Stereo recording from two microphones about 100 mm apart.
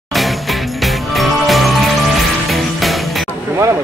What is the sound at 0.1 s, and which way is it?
Music, centre (ahead or behind).